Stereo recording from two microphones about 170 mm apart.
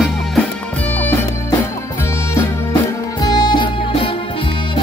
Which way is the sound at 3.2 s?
25° left (ahead or behind).